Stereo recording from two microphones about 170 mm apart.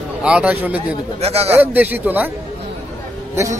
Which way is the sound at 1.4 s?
10° right (ahead or behind).